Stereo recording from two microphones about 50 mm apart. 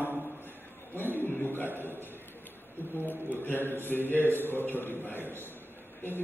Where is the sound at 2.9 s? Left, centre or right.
Left.